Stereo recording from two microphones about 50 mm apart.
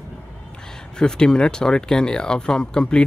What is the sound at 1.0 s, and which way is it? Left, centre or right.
Speech, centre.